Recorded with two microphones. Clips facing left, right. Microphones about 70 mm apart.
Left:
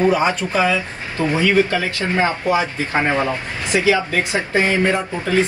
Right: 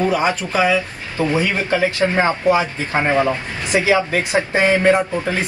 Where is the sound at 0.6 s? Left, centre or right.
Centre.